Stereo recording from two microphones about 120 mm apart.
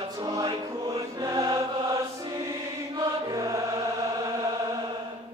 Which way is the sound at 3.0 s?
30° right (ahead or behind).